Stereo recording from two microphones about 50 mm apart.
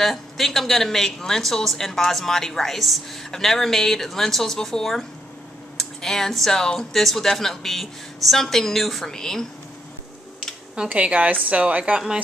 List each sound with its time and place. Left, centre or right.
0.0 s a woman's voice: centre
10.9 s a woman's voice: right